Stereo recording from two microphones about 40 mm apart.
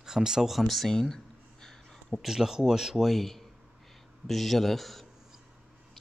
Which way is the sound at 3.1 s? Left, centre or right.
Centre.